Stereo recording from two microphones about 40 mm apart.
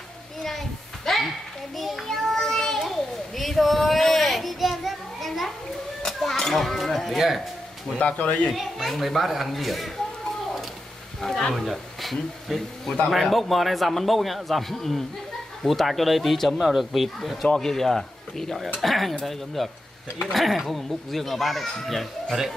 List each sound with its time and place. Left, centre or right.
0.4 s children playing: centre
6.0 s a sound: centre
7.2 s a child's voice: centre
8.0 s speech: left
8.5 s a child's voice: centre
11.1 s speech: centre
11.5 s a child's voice: centre
17.6 s cutlery: centre
18.8 s a child's voice: centre